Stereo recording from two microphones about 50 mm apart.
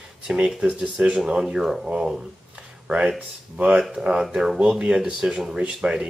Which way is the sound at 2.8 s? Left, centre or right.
Right.